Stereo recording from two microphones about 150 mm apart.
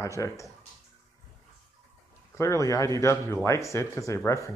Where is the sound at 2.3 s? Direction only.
20° left (ahead or behind).